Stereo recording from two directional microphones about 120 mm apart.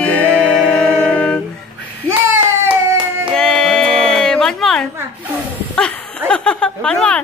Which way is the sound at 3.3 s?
5° left (ahead or behind).